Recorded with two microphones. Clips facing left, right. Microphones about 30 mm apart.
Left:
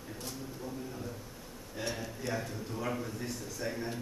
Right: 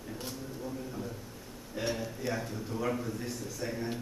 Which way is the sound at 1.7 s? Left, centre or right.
Centre.